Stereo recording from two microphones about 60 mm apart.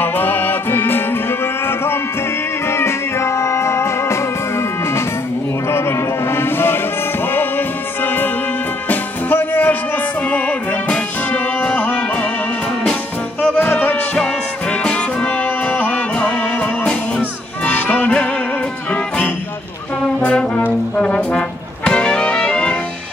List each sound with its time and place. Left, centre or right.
0.0 s music: left
13.4 s music: centre
13.7 s music: left
13.9 s music: centre
20.2 s trombone: centre
20.6 s brass instrument: left